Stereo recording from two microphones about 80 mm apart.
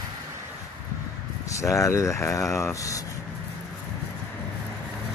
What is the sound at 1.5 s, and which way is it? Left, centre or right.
Speech, left.